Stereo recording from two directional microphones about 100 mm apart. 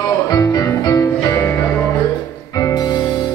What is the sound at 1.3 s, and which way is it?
Music, 20° left (ahead or behind).